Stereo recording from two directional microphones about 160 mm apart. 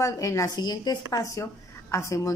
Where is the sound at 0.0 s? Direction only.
20° left (ahead or behind).